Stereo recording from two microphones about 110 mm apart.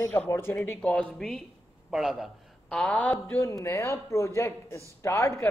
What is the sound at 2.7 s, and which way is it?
A man's voice, 10° left (ahead or behind).